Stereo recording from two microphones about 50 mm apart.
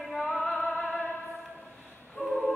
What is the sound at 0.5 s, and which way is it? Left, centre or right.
Opera, centre.